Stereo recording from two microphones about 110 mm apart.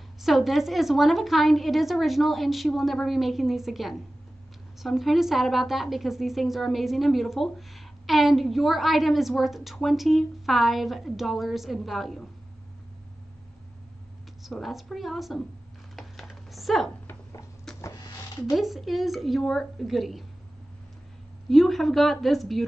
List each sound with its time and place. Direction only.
0.2 s a woman's voice: centre (ahead or behind)
14.4 s a woman's voice: centre (ahead or behind)
16.0 s chopping: centre (ahead or behind)
17.1 s a sound: 25° left (ahead or behind)
17.7 s printer: 5° left (ahead or behind)
18.5 s a woman's voice: centre (ahead or behind)
21.5 s a woman's voice: centre (ahead or behind)